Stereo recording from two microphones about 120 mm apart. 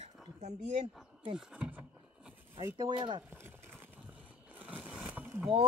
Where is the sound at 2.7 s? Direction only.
40° right (ahead or behind).